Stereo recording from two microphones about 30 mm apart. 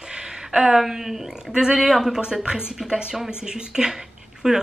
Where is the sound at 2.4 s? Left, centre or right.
Right.